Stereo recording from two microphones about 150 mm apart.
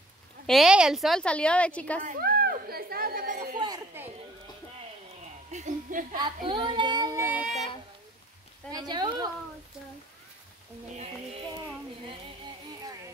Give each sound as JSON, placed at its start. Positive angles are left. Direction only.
{"t": 0.5, "sound": "a woman's voice", "side_deg": -5}
{"t": 2.0, "sound": "chatter", "side_deg": -85}
{"t": 3.5, "sound": "chatter", "side_deg": -30}
{"t": 5.5, "sound": "speech", "side_deg": -55}
{"t": 6.1, "sound": "speech", "side_deg": -30}
{"t": 8.7, "sound": "speech", "side_deg": -30}
{"t": 11.5, "sound": "a sound", "side_deg": -30}